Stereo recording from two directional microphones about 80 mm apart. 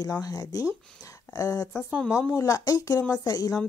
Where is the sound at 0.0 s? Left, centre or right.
Left.